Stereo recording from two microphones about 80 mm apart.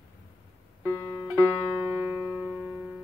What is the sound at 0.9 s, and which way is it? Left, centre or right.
Music, left.